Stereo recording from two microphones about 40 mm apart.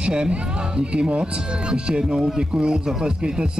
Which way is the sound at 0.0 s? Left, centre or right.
Centre.